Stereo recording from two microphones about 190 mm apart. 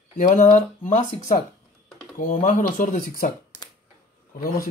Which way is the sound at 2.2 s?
45° left (ahead or behind).